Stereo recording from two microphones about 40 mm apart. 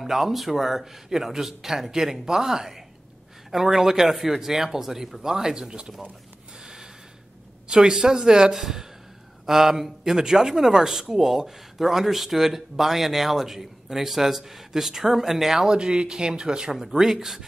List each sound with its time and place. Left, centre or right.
0.0 s speech: centre
6.6 s snort: centre
7.6 s speech: centre
15.7 s speech: right